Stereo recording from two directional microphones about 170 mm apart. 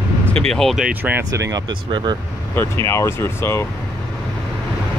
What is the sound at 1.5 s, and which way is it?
Speech, 25° right (ahead or behind).